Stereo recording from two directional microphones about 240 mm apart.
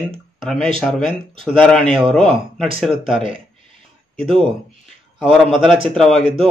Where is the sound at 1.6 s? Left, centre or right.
Centre.